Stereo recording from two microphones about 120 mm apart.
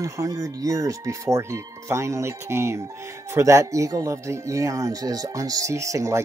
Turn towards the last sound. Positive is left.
turn(degrees=-25)  # may be behind; listen again after turning